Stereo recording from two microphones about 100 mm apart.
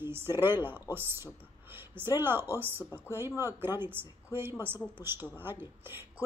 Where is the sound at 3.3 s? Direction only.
30° left (ahead or behind).